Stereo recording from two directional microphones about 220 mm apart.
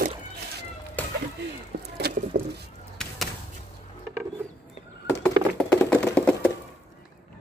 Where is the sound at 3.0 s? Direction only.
5° left (ahead or behind).